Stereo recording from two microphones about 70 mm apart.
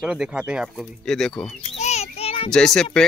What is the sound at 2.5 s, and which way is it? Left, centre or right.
Speech, centre.